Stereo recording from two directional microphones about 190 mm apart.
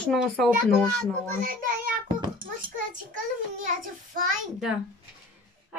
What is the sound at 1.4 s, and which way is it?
Speech, 45° right (ahead or behind).